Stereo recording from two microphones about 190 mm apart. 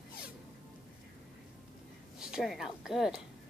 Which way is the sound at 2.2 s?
Centre (ahead or behind).